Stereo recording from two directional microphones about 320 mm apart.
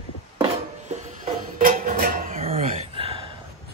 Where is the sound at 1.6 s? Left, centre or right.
Right.